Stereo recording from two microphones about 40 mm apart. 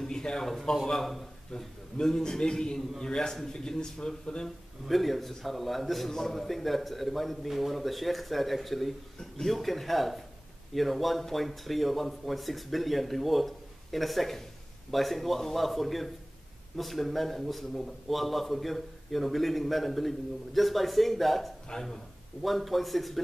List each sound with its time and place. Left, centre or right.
0.0 s speech: centre
0.8 s a man's voice: centre
1.5 s speech: centre
4.8 s a man's voice: centre
21.7 s speech: centre
22.4 s a man's voice: centre